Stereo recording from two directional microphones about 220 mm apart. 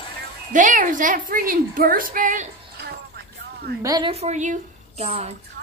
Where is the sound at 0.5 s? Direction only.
35° right (ahead or behind).